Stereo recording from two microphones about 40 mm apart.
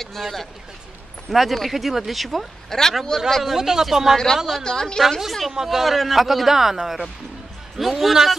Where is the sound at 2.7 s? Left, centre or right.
Centre.